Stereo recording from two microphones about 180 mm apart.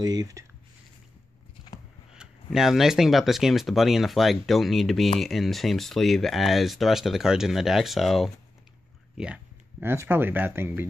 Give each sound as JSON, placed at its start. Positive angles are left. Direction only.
{"t": 0.0, "sound": "speech", "side_deg": -20}
{"t": 2.5, "sound": "speech", "side_deg": 0}